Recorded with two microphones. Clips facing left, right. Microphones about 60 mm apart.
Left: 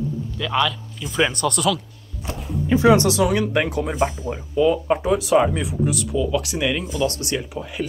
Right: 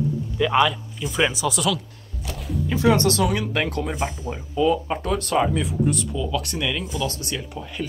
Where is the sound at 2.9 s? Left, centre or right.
Centre.